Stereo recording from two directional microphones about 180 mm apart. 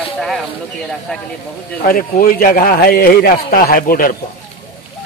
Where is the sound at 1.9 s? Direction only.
50° left (ahead or behind).